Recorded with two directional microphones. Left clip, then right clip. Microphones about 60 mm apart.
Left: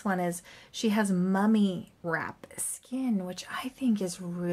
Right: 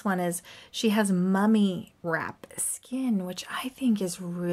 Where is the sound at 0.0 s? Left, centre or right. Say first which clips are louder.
Right 2 dB; right.